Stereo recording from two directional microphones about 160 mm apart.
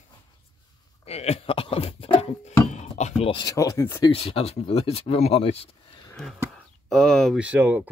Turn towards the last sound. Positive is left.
turn(degrees=-10)  # may be behind; listen again after turning